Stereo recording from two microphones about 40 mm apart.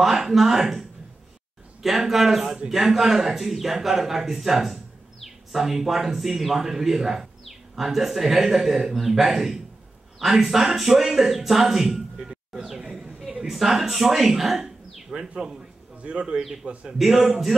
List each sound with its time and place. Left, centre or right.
0.0 s a man's voice: centre
13.5 s a man's voice: centre
16.0 s a man's voice: right